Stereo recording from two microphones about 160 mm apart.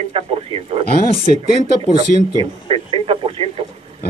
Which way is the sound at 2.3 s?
30° right (ahead or behind).